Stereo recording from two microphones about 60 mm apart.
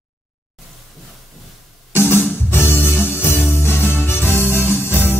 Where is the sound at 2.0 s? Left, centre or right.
Left.